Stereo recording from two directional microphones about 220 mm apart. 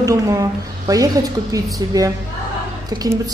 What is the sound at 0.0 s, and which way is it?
A woman's voice, 15° right (ahead or behind).